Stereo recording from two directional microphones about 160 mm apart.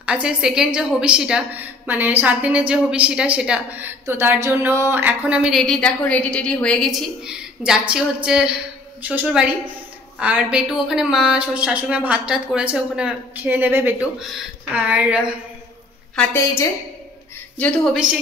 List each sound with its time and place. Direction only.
0.0 s a woman's voice: 5° right (ahead or behind)
16.2 s a woman's voice: 15° left (ahead or behind)